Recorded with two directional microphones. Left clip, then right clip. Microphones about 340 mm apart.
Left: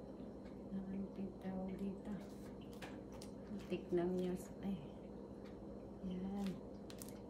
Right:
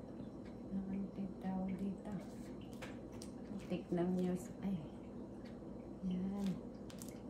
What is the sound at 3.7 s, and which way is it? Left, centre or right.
A woman's voice, centre.